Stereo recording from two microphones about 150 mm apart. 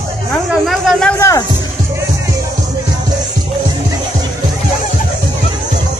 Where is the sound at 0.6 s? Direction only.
Centre (ahead or behind).